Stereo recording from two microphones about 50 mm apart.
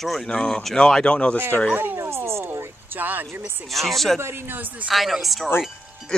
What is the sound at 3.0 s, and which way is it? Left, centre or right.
Speech, right.